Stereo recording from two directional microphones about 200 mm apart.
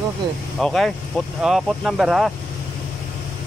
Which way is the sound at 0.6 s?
Centre (ahead or behind).